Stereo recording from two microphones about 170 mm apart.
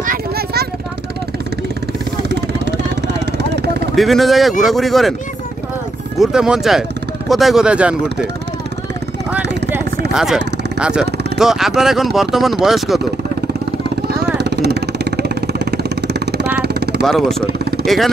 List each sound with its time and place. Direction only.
0.0 s vehicle: 55° right (ahead or behind)
2.2 s vehicle: 85° right
3.9 s speech: centre (ahead or behind)
6.1 s speech: 5° right (ahead or behind)
10.1 s speech: 5° right (ahead or behind)
14.4 s vehicle: 75° right (ahead or behind)
17.0 s speech: centre (ahead or behind)